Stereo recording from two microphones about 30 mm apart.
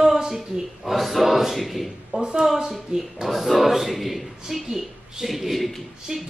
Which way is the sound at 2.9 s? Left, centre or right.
Right.